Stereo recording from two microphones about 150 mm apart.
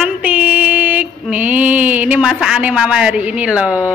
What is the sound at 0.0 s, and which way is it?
Female singing, 10° right (ahead or behind).